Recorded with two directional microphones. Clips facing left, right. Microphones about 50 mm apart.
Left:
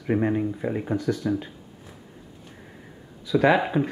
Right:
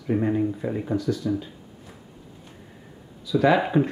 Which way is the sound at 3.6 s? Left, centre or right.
Centre.